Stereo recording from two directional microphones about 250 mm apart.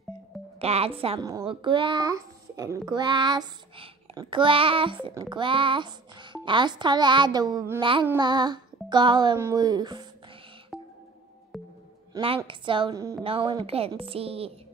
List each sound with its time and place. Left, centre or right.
0.6 s speech: right
8.1 s music: centre
10.7 s music: centre
12.1 s a sound: right
12.4 s speech: centre